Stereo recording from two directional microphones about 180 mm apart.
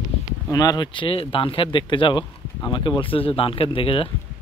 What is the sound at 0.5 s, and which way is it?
Speech, 20° left (ahead or behind).